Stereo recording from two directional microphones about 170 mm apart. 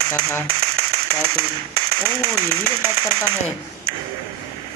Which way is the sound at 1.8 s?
30° right (ahead or behind).